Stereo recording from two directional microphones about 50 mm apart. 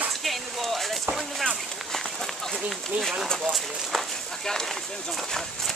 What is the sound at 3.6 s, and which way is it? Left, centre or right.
Speech, centre.